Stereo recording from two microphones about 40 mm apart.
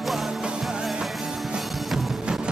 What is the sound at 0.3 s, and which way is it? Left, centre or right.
Music, centre.